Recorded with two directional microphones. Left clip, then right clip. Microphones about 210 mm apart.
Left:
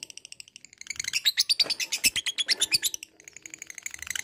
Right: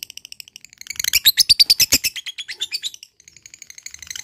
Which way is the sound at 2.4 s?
30° left (ahead or behind).